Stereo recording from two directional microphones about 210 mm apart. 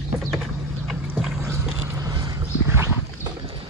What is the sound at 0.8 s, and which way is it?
Boat, centre (ahead or behind).